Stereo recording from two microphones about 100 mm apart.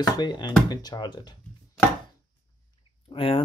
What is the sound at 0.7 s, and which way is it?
Speech, 50° left (ahead or behind).